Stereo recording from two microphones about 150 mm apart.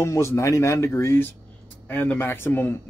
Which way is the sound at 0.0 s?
20° left (ahead or behind).